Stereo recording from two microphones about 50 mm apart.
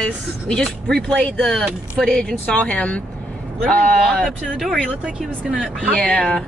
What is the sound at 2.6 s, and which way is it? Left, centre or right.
Speech, left.